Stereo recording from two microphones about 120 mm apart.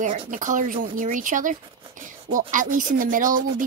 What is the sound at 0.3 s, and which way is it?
Speech, 90° right.